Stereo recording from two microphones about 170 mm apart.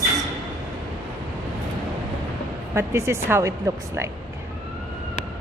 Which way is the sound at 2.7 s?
15° right (ahead or behind).